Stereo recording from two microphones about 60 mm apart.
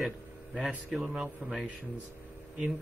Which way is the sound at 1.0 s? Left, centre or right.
Centre.